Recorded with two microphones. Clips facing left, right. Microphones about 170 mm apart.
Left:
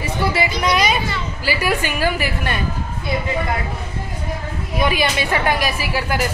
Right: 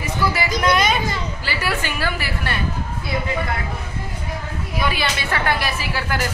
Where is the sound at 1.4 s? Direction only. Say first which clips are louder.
Left 7 dB; 15° left (ahead or behind).